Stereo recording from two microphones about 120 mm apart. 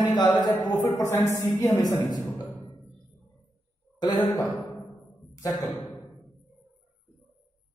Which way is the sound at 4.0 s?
35° left (ahead or behind).